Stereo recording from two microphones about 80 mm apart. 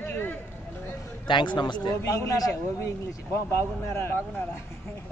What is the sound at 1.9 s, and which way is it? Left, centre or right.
A man's voice, left.